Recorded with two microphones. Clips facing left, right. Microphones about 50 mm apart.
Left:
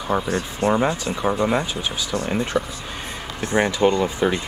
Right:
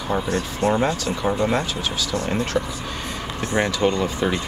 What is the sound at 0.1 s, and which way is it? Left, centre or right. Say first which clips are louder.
Speech: left 1 dB; centre.